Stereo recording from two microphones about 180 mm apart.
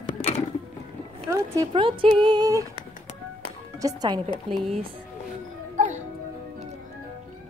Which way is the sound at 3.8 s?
25° right (ahead or behind).